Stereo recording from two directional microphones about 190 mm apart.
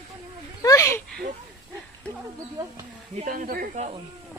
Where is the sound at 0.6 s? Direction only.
15° left (ahead or behind).